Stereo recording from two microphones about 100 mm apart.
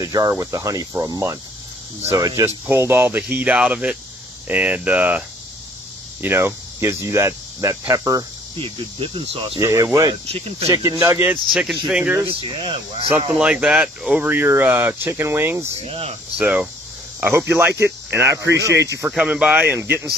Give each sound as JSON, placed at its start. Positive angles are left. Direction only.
{"t": 0.0, "sound": "speech", "side_deg": -35}
{"t": 2.7, "sound": "speech", "side_deg": -25}
{"t": 6.2, "sound": "speech", "side_deg": -25}
{"t": 8.5, "sound": "cricket", "side_deg": -65}
{"t": 9.6, "sound": "speech", "side_deg": -35}
{"t": 10.2, "sound": "speech", "side_deg": -85}
{"t": 10.7, "sound": "speech", "side_deg": -40}
{"t": 11.0, "sound": "speech", "side_deg": -20}
{"t": 12.3, "sound": "cricket", "side_deg": -55}
{"t": 13.3, "sound": "speech", "side_deg": -10}
{"t": 15.7, "sound": "speech", "side_deg": -85}
{"t": 16.3, "sound": "speech", "side_deg": -10}
{"t": 17.2, "sound": "speech", "side_deg": -25}
{"t": 19.0, "sound": "speech", "side_deg": -10}